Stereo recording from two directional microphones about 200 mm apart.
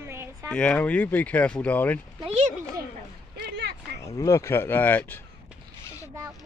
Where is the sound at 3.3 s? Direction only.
55° right (ahead or behind).